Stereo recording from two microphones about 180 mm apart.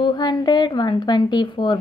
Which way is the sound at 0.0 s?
25° left (ahead or behind).